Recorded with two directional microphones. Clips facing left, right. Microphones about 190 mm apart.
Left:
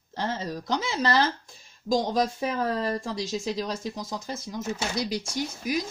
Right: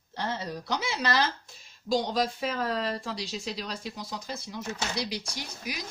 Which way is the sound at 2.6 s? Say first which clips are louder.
Left 3 dB; 40° left (ahead or behind).